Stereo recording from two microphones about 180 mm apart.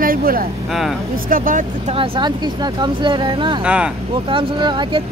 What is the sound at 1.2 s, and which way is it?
Speech, 50° right (ahead or behind).